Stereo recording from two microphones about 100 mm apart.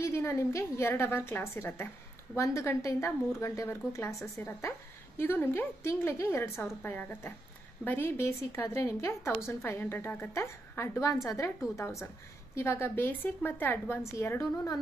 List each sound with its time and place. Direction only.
0.0 s a woman's voice: 25° left (ahead or behind)